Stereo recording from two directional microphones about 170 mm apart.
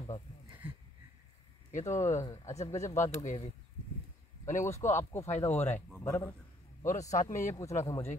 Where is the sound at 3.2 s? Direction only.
45° left (ahead or behind).